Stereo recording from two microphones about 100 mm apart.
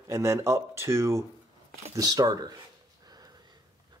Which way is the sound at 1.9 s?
40° right (ahead or behind).